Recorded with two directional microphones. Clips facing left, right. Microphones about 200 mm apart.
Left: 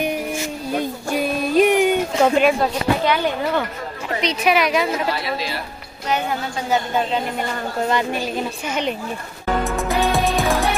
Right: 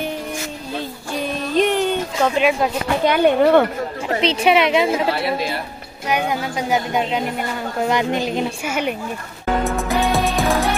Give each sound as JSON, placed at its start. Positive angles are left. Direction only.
{"t": 0.7, "sound": "a sound", "side_deg": 10}
{"t": 3.1, "sound": "speech", "side_deg": -60}
{"t": 4.1, "sound": "a woman's voice", "side_deg": -30}
{"t": 6.0, "sound": "speech", "side_deg": -10}
{"t": 9.7, "sound": "music", "side_deg": 0}